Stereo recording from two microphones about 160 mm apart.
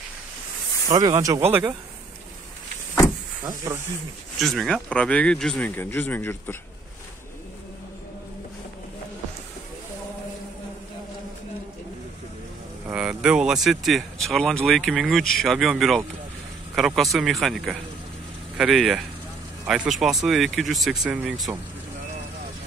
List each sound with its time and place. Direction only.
0.8 s speech: 20° right (ahead or behind)
3.4 s speech: 15° right (ahead or behind)
4.4 s speech: centre (ahead or behind)
12.8 s speech: 5° right (ahead or behind)